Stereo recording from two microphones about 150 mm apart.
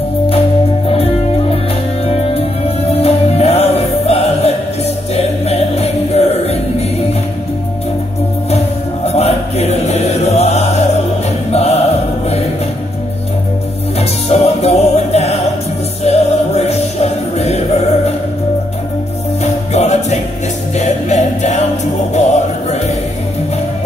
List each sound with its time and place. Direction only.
0.8 s music: 40° left (ahead or behind)
2.9 s music: 45° left (ahead or behind)
8.5 s music: 45° left (ahead or behind)
13.9 s music: 45° left (ahead or behind)
19.4 s music: 50° left (ahead or behind)